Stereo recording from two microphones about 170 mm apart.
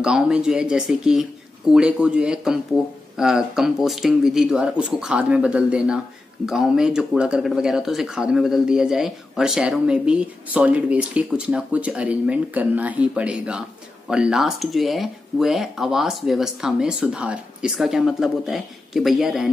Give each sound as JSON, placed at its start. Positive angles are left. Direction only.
{"t": 0.0, "sound": "speech", "side_deg": -5}